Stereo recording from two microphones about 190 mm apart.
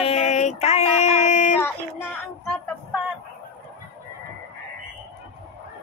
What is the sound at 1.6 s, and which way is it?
Speech, 10° left (ahead or behind).